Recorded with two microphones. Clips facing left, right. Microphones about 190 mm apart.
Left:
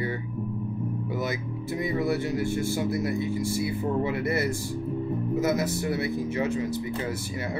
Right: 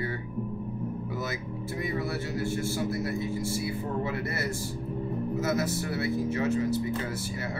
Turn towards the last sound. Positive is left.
turn(degrees=15)  # may be behind; listen again after turning